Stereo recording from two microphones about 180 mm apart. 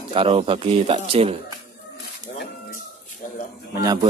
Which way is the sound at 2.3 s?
45° left (ahead or behind).